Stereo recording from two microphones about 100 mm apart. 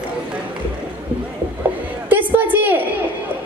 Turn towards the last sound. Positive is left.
turn(degrees=-15)  # may be behind; listen again after turning